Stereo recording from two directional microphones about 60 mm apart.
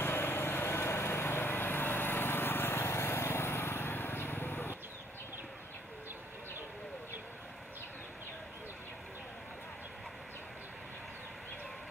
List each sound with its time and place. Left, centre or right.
0.0 s lawn mower: left